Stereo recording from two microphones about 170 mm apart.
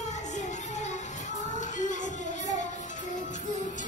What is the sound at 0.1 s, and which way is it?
Music, 45° left (ahead or behind).